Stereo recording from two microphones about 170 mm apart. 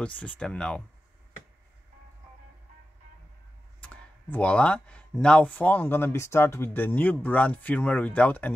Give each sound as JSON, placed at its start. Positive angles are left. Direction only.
{"t": 0.0, "sound": "speech", "side_deg": 10}
{"t": 3.8, "sound": "speech", "side_deg": 10}